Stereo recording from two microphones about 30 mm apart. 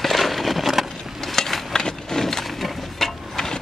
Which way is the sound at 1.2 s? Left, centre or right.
Centre.